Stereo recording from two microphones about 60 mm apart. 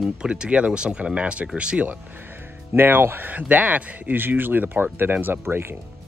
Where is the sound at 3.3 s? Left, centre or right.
Right.